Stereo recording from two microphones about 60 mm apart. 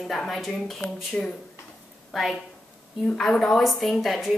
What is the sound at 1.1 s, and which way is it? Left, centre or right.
Speech, centre.